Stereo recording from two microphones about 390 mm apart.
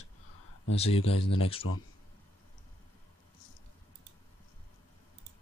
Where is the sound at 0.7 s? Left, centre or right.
Centre.